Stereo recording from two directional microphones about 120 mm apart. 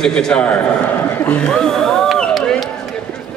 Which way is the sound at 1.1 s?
15° left (ahead or behind).